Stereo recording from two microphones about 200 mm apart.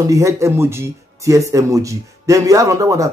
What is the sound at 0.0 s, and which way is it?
Speech, 15° right (ahead or behind).